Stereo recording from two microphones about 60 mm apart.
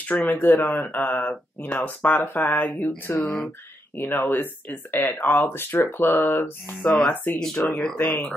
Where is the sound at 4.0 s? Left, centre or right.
Left.